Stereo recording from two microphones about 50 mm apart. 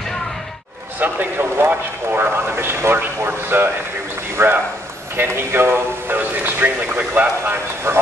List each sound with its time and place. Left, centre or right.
0.9 s speech: right
7.9 s speech: right